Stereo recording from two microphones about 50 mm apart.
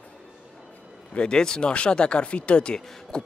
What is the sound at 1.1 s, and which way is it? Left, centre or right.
Speech, centre.